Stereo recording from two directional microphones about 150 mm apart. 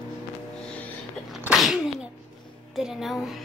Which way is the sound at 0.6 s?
5° left (ahead or behind).